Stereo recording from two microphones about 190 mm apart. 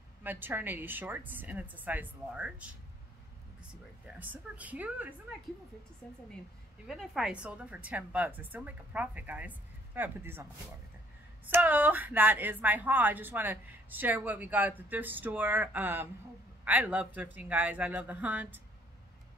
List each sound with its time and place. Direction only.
0.2 s a woman's voice: 10° right (ahead or behind)
4.2 s a woman's voice: 10° right (ahead or behind)
6.9 s a woman's voice: centre (ahead or behind)
11.5 s a woman's voice: 10° right (ahead or behind)